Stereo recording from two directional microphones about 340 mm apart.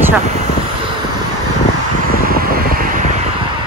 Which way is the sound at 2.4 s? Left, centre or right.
Right.